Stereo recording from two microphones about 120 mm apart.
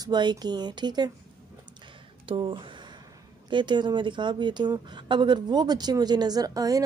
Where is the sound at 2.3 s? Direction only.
45° right (ahead or behind).